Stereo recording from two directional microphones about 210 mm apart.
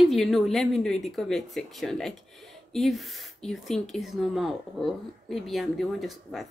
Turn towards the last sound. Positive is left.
turn(degrees=0)  # may be behind; listen again after turning